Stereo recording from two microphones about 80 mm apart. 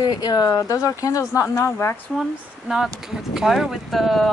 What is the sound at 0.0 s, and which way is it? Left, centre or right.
Speech, left.